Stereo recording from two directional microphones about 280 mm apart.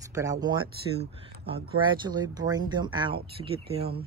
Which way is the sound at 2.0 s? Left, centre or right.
Centre.